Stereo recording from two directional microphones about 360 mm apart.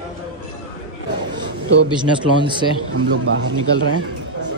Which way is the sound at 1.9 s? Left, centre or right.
Centre.